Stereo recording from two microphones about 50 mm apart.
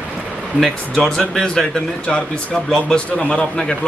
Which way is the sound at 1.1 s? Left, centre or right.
Centre.